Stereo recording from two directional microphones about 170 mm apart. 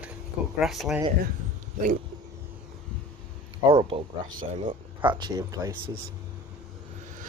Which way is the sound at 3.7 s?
30° right (ahead or behind).